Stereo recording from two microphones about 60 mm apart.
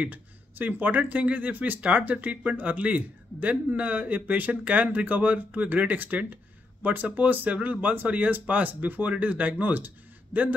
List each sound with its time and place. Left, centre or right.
0.0 s speech: right